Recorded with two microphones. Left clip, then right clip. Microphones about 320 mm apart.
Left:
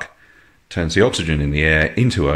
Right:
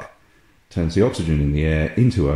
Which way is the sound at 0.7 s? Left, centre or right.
Left.